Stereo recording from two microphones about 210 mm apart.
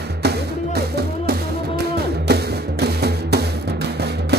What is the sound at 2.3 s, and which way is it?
Music, 50° right (ahead or behind).